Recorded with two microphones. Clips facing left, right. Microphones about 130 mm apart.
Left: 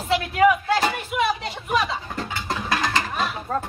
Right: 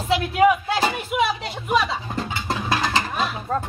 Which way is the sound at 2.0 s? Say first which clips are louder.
Right 2 dB; 15° right (ahead or behind).